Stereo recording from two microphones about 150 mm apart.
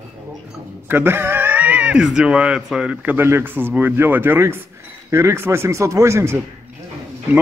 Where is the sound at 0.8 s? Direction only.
15° right (ahead or behind).